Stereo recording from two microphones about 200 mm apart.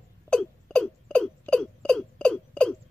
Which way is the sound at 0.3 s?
5° left (ahead or behind).